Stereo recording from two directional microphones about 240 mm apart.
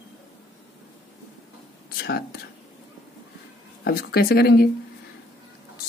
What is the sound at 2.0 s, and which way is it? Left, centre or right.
Speech, left.